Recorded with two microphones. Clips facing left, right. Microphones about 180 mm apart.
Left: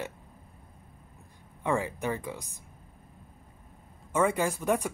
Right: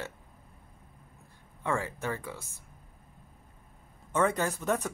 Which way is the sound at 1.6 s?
15° left (ahead or behind).